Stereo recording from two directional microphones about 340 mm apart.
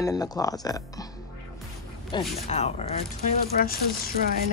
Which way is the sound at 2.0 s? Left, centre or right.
Centre.